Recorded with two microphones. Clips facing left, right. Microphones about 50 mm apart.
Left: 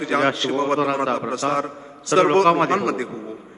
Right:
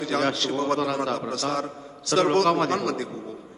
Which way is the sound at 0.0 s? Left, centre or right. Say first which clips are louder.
Left 5 dB; left.